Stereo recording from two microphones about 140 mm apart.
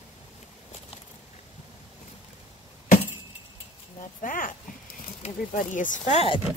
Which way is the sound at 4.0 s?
75° left (ahead or behind).